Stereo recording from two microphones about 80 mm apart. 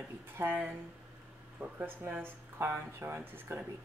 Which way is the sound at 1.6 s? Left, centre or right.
Right.